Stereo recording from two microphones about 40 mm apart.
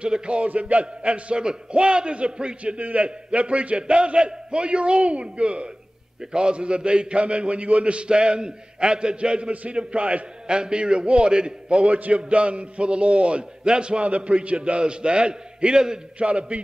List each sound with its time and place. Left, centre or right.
0.0 s a man's voice: right
0.5 s a man's voice: right
9.5 s a man's voice: right; by 16.0 s centre
16.2 s a man's voice: right